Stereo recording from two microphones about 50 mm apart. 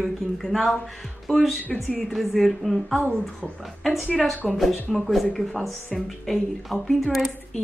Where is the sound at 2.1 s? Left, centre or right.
Centre.